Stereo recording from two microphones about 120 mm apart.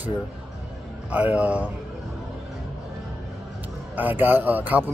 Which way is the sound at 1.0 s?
10° right (ahead or behind).